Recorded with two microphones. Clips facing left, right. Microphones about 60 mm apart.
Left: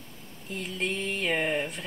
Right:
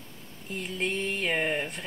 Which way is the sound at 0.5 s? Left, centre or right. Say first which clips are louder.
Right 1 dB; centre.